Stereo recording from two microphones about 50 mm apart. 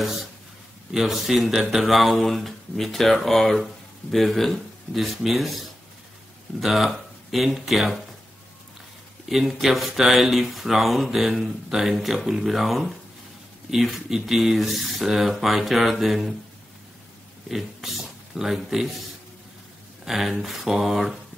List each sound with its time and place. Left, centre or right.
0.0 s a man's voice: centre
9.3 s speech: centre
17.5 s speech: centre
20.1 s speech: centre